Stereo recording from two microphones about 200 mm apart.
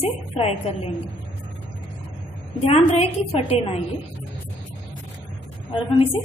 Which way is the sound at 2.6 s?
30° left (ahead or behind).